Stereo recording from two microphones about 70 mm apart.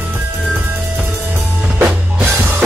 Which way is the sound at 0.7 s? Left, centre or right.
Right.